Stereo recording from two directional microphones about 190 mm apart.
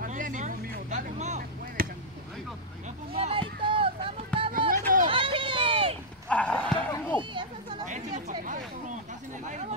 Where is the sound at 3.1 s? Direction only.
30° right (ahead or behind).